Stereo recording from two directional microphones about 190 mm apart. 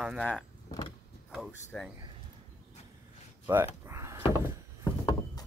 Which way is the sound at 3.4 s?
10° right (ahead or behind).